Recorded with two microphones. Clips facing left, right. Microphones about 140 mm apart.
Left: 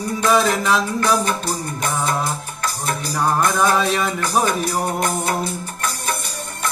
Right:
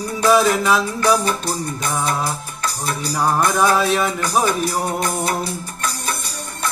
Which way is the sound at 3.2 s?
5° right (ahead or behind).